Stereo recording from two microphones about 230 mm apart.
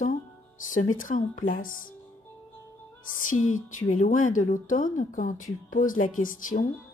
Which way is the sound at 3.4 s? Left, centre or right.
Left.